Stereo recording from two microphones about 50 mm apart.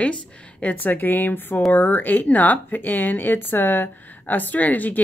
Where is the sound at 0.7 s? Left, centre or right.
Left.